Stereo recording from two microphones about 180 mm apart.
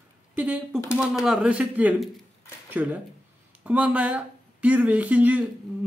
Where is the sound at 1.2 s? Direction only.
5° right (ahead or behind).